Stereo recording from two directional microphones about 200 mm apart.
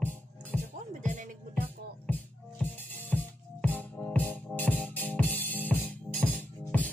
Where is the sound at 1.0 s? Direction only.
40° right (ahead or behind).